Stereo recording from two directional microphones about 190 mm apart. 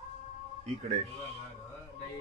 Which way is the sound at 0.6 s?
35° right (ahead or behind).